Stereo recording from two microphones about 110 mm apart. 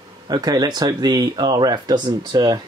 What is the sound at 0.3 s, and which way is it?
Speech, 35° right (ahead or behind).